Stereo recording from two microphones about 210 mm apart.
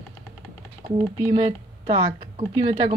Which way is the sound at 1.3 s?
15° right (ahead or behind).